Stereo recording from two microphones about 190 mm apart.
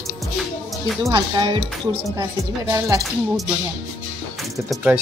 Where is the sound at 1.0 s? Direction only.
25° right (ahead or behind).